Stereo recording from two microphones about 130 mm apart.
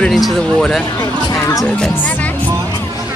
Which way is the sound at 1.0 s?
30° left (ahead or behind).